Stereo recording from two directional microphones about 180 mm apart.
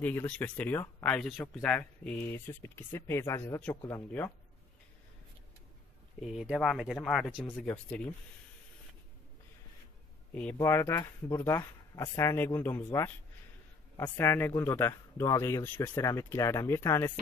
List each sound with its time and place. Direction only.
0.0 s speech: 10° left (ahead or behind)
6.2 s speech: centre (ahead or behind)
7.4 s speech: 10° left (ahead or behind)
10.3 s speech: 10° left (ahead or behind)